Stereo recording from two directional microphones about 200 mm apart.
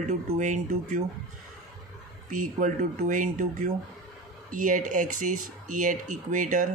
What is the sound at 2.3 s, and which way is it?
Speech, 40° right (ahead or behind).